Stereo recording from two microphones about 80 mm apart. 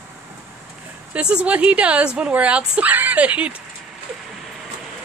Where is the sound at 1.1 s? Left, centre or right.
Centre.